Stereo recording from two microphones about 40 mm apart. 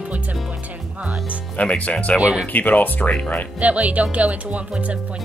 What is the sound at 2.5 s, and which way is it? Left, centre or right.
Speech, left.